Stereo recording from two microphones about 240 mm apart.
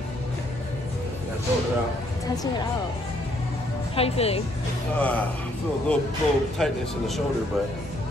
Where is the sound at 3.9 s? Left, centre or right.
Left.